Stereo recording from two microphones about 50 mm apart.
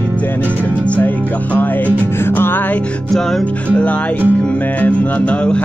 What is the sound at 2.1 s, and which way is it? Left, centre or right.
Music, left.